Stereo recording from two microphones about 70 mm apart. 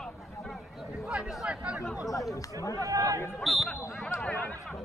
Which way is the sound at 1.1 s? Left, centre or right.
Centre.